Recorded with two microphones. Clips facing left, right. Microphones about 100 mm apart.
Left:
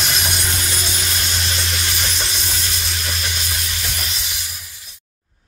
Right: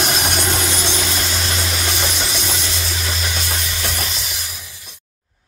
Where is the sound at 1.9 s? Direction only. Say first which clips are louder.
Right 3 dB; 75° right (ahead or behind).